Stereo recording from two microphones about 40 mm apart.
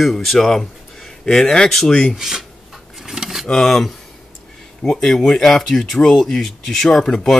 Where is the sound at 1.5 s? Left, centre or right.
Centre.